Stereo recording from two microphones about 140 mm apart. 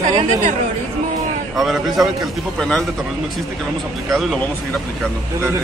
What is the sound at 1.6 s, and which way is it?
A man's voice, centre (ahead or behind).